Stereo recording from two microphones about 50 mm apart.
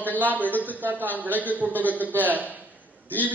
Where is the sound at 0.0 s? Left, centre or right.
Right.